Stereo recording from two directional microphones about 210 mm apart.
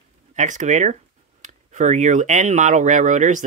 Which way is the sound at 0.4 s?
35° right (ahead or behind).